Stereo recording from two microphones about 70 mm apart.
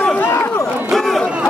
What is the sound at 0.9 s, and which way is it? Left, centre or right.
Chatter, centre.